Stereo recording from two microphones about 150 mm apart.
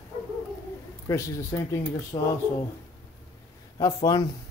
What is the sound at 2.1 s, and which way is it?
Speech, 30° left (ahead or behind).